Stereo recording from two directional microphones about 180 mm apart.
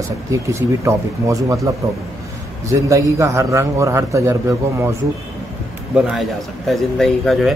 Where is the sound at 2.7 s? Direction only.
15° right (ahead or behind).